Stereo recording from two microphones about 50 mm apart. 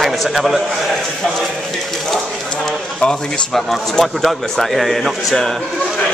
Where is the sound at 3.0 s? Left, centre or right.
Centre.